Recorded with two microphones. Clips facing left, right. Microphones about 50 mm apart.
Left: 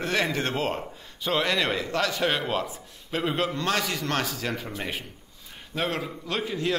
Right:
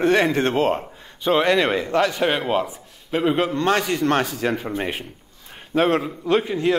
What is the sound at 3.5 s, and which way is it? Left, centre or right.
A man's voice, right.